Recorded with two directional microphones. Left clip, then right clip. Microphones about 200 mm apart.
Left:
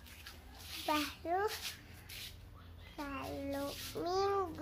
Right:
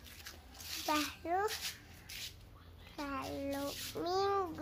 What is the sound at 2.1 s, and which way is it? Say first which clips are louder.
Bird: right 2 dB; 35° right (ahead or behind).